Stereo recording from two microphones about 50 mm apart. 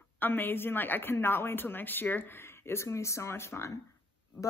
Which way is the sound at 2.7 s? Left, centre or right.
Left.